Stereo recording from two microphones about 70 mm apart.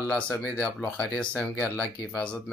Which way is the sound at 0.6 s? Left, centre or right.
Left.